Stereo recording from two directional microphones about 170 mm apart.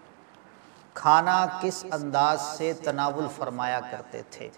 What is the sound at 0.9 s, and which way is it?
A man's voice, 20° right (ahead or behind).